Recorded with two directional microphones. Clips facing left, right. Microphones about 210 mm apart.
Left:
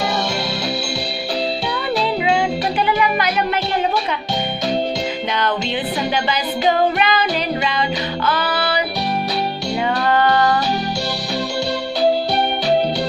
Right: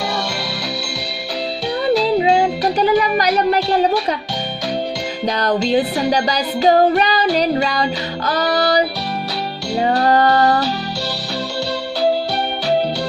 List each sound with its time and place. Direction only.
2.1 s music: 35° right (ahead or behind)
5.4 s music: 40° right (ahead or behind)